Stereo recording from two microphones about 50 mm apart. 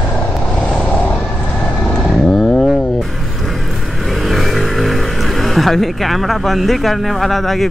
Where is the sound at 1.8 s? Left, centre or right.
Centre.